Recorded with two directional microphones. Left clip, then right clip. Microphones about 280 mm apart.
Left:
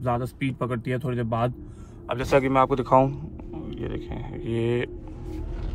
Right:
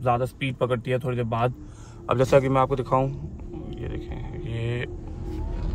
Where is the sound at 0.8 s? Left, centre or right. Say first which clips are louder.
Right 2 dB; centre.